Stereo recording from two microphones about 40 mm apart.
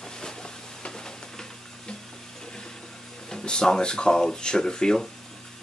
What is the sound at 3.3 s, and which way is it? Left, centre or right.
Speech, centre.